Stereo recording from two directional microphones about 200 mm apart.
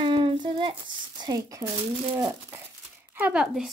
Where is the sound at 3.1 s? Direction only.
5° right (ahead or behind).